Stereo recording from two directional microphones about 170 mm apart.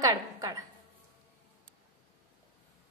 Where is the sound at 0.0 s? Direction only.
20° right (ahead or behind).